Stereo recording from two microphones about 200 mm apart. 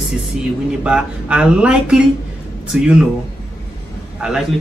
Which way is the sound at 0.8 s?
5° right (ahead or behind).